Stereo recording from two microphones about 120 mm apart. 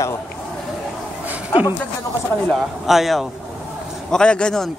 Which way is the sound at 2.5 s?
Centre (ahead or behind).